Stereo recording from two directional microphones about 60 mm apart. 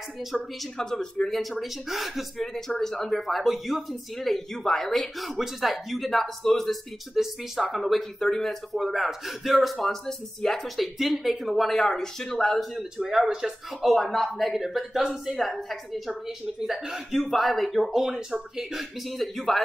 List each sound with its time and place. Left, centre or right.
0.2 s speech: centre
0.7 s speech: centre
7.8 s speech: centre